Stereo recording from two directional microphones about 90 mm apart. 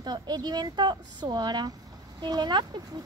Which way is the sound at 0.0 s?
50° right (ahead or behind).